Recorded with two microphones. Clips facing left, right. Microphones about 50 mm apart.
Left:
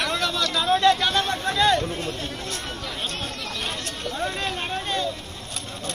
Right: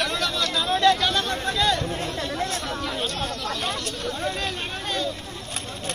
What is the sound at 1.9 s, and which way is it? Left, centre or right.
Chatter, right.